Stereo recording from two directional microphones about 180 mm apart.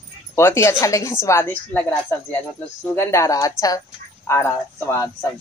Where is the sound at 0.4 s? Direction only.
15° left (ahead or behind).